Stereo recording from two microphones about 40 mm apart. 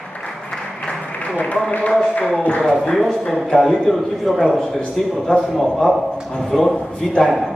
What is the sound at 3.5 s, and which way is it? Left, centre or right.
A man's voice, centre.